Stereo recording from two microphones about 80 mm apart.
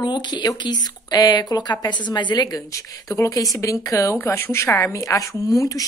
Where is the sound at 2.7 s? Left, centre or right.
Left.